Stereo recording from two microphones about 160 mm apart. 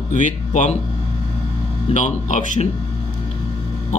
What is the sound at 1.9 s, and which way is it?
Speech, 50° left (ahead or behind).